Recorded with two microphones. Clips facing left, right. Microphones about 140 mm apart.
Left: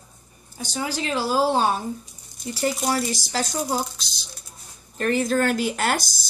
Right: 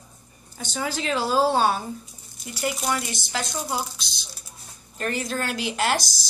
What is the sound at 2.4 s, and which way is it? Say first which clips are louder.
Speech: left 3 dB; 30° left (ahead or behind).